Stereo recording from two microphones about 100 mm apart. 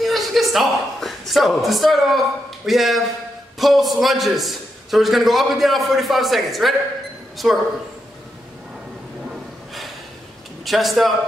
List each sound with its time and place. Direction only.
0.0 s a man's voice: centre (ahead or behind)
10.6 s a man's voice: centre (ahead or behind)